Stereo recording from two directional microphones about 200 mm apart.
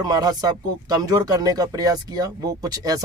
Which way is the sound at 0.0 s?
20° right (ahead or behind).